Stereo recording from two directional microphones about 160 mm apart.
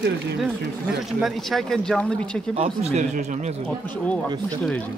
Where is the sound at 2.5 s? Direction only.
40° right (ahead or behind).